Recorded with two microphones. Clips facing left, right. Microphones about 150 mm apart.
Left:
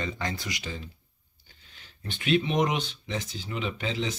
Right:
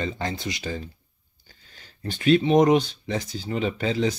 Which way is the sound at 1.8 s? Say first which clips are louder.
Right 7 dB; 40° right (ahead or behind).